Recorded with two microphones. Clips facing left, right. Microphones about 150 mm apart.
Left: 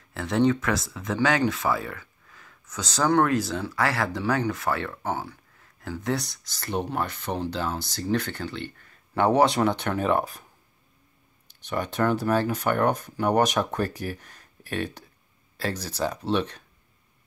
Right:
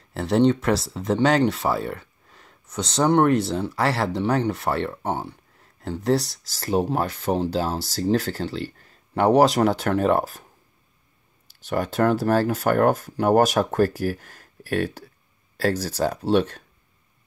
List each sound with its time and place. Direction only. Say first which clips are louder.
0.1 s speech: right 4 dB; 30° right (ahead or behind)
11.7 s speech: right 4 dB; 45° right (ahead or behind)
15.5 s a sound: right 7 dB; 40° right (ahead or behind)
16.0 s speech: right 4 dB; 40° right (ahead or behind)